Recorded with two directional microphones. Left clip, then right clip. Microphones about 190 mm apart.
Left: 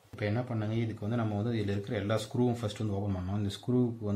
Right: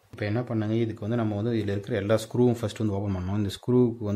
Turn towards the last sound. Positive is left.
turn(degrees=-60)  # may be behind; listen again after turning